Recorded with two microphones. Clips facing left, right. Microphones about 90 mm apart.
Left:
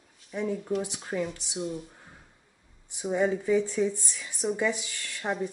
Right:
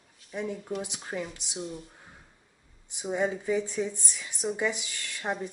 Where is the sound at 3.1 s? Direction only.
15° right (ahead or behind).